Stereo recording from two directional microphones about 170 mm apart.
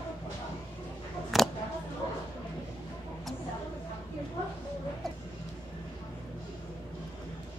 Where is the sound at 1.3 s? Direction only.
Centre (ahead or behind).